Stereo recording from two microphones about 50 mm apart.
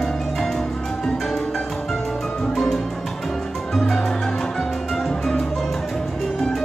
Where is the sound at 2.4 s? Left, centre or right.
Centre.